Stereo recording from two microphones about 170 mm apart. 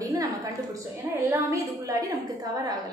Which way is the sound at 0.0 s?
20° right (ahead or behind).